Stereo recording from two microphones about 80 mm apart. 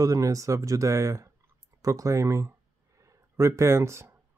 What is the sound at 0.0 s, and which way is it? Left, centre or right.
Speech, right.